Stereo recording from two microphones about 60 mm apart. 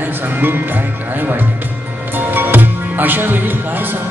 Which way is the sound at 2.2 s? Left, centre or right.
Right.